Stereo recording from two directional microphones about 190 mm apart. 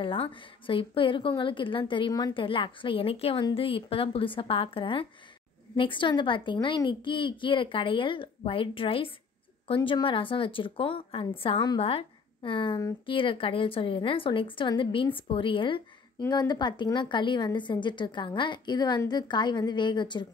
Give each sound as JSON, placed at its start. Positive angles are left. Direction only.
{"t": 0.0, "sound": "a woman's voice", "side_deg": 25}